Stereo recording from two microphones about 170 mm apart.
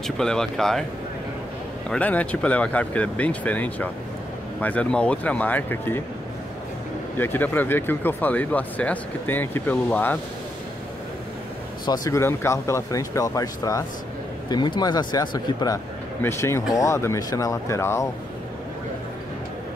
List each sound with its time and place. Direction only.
0.0 s speech: 5° left (ahead or behind)
1.9 s speech: 10° left (ahead or behind)
7.2 s speech: 10° left (ahead or behind)
11.8 s speech: 20° left (ahead or behind)